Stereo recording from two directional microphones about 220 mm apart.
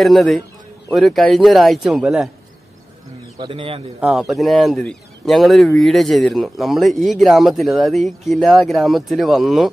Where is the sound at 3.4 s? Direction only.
25° right (ahead or behind).